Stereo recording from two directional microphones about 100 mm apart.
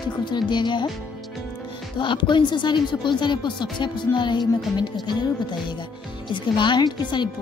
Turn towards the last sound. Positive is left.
turn(degrees=50)  # may be behind; listen again after turning